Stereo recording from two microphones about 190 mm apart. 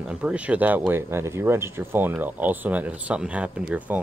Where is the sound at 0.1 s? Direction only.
5° right (ahead or behind).